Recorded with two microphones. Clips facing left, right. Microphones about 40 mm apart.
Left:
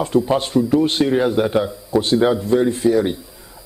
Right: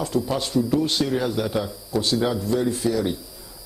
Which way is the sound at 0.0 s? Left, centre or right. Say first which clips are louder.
Left 7 dB; left.